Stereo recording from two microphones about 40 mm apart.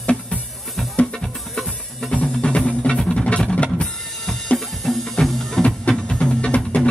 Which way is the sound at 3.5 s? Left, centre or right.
Left.